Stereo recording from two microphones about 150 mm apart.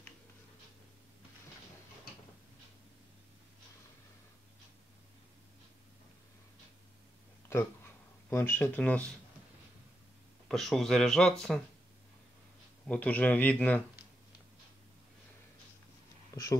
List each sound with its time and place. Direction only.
7.4 s speech: 15° left (ahead or behind)
10.5 s speech: centre (ahead or behind)
12.8 s a man's voice: 10° left (ahead or behind)